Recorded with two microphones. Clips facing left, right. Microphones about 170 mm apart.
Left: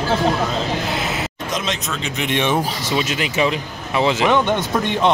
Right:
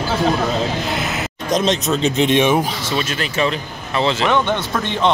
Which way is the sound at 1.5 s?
35° right (ahead or behind).